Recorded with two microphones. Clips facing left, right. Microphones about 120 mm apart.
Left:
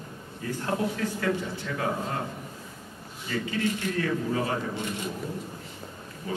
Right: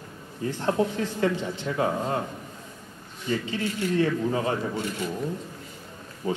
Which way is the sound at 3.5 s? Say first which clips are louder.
Right 1 dB; 25° right (ahead or behind).